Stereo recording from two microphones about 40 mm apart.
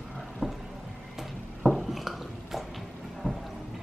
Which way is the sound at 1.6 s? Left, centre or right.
Centre.